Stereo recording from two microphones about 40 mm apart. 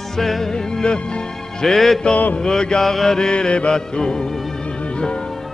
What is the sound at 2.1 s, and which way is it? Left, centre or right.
Mantra, left.